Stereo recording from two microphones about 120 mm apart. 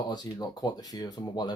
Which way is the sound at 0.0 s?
35° left (ahead or behind).